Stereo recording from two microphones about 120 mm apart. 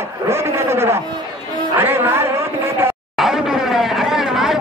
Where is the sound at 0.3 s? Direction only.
20° right (ahead or behind).